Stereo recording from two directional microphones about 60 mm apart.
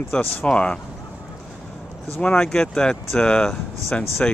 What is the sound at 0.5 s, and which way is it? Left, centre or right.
Speech, centre.